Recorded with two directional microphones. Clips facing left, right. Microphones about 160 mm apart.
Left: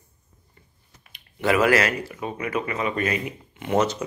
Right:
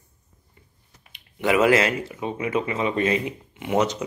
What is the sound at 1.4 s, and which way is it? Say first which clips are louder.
Speech: right 1 dB; 20° right (ahead or behind).